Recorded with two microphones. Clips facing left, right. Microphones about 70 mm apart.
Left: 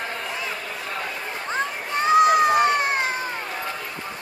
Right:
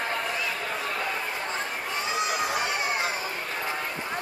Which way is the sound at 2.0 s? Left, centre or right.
Left.